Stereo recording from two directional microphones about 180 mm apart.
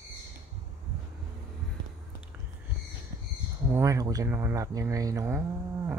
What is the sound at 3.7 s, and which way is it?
Speech, 15° right (ahead or behind).